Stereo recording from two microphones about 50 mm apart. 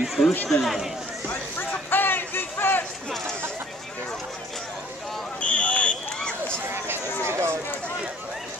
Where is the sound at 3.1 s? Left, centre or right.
Centre.